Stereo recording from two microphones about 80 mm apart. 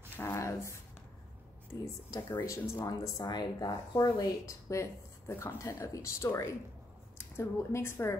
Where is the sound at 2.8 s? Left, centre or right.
Left.